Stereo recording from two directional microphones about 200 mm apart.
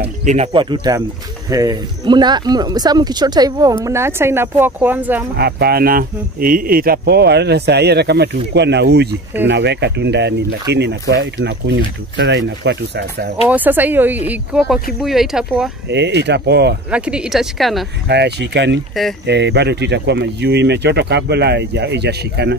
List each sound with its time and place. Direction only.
0.2 s speech: 35° right (ahead or behind); by 5.2 s 10° right (ahead or behind)
5.3 s speech: 55° right (ahead or behind)
13.5 s speech: 10° right (ahead or behind)
15.9 s speech: 60° right (ahead or behind)
16.9 s speech: 5° right (ahead or behind)
18.0 s speech: 55° right (ahead or behind)